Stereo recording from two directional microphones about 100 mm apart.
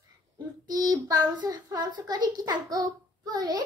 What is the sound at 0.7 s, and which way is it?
A child's voice, 40° right (ahead or behind).